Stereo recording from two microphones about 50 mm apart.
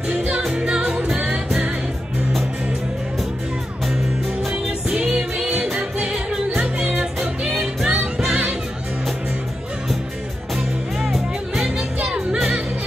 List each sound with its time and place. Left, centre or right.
0.1 s music: centre
3.8 s music: centre
10.5 s music: centre